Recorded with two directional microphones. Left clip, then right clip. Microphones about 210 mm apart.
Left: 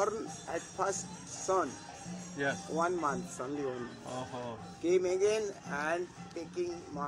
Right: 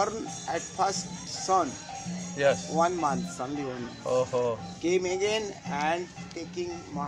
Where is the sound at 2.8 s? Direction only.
20° right (ahead or behind).